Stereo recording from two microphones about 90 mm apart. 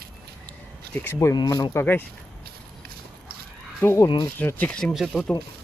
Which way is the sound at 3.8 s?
30° left (ahead or behind).